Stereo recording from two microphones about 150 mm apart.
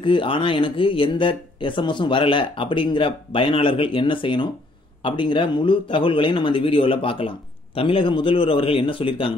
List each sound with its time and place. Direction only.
0.0 s speech: 35° left (ahead or behind)